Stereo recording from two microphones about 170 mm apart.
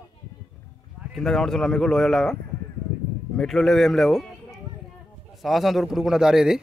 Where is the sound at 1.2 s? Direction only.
Centre (ahead or behind).